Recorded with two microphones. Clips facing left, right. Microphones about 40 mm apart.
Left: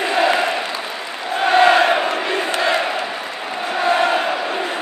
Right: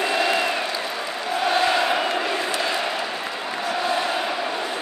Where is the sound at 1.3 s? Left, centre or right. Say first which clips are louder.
Left 8 dB; left.